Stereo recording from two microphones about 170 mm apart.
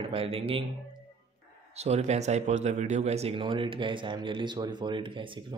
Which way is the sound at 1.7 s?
40° right (ahead or behind).